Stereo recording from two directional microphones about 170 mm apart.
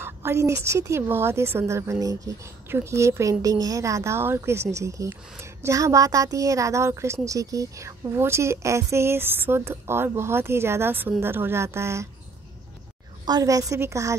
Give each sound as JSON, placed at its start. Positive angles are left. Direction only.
{"t": 0.0, "sound": "a woman's voice", "side_deg": -15}
{"t": 13.2, "sound": "a woman's voice", "side_deg": -20}